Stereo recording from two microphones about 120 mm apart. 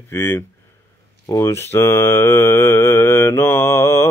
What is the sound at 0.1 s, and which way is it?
Speech, 20° left (ahead or behind).